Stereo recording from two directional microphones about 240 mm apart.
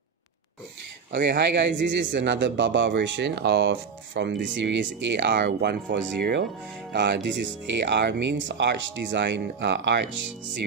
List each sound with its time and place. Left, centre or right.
1.1 s a man's voice: right